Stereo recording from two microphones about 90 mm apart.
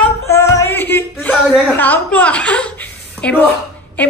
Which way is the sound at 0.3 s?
35° left (ahead or behind).